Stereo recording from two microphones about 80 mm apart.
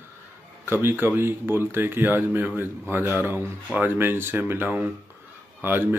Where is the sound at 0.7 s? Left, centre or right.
Right.